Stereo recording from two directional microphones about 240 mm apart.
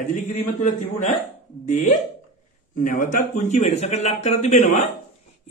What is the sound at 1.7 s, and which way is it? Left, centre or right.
Speech, left.